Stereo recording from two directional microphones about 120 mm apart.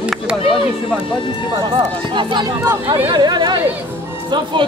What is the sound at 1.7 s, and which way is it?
Speech, 40° right (ahead or behind).